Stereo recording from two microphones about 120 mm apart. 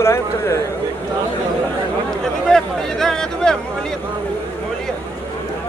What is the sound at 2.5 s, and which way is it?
Speech, 5° left (ahead or behind).